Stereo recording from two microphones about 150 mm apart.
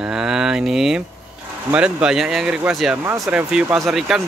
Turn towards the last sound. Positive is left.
turn(degrees=0)  # may be behind; listen again after turning